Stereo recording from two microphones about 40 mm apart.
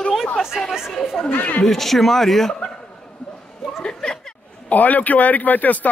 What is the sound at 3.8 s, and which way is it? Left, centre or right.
Chuckle, left.